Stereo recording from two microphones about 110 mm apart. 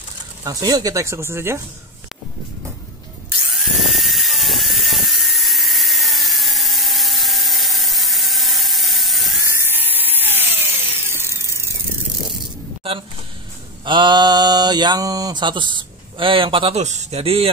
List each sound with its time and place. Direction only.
0.4 s speech: 35° right (ahead or behind)
3.5 s dental drill: centre (ahead or behind)
9.4 s a sound: 25° right (ahead or behind)
13.8 s mantra: 45° right (ahead or behind)
16.7 s speech: 90° right; by 17.5 s 60° right (ahead or behind)